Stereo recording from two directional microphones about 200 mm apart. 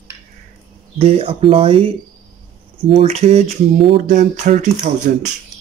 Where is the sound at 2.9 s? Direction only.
30° right (ahead or behind).